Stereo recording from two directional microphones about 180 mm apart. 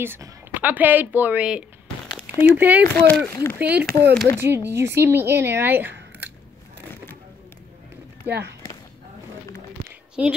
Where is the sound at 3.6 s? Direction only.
5° right (ahead or behind).